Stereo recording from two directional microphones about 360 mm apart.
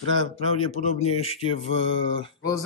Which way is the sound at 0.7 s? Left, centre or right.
Centre.